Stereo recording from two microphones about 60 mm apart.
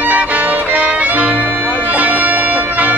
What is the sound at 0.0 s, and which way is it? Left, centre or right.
Music, right.